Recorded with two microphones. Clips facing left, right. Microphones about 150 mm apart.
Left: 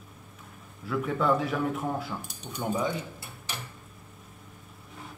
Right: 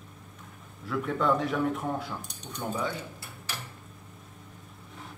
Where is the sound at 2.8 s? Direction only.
20° left (ahead or behind).